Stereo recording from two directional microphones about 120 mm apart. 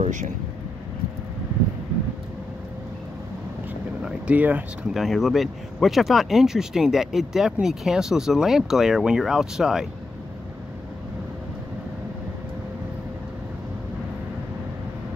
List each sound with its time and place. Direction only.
0.0 s speech: 90° right
4.0 s boat: 10° right (ahead or behind)
4.9 s speech: centre (ahead or behind)